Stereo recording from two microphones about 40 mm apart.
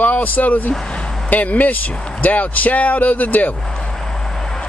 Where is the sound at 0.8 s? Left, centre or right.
Left.